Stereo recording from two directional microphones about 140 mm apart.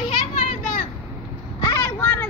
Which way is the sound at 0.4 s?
65° left (ahead or behind).